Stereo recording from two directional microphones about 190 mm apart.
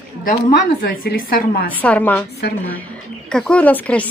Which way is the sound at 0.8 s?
50° left (ahead or behind).